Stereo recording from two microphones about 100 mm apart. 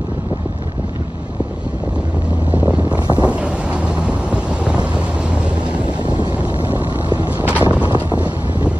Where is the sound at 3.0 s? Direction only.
45° right (ahead or behind).